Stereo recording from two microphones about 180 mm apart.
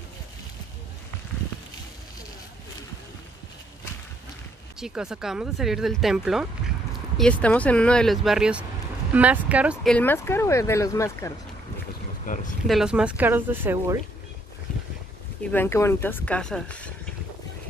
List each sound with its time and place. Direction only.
4.7 s speech: 5° right (ahead or behind)
9.8 s speech: 10° left (ahead or behind)
12.3 s speech: 50° left (ahead or behind)
12.6 s speech: centre (ahead or behind)
15.5 s speech: 15° left (ahead or behind)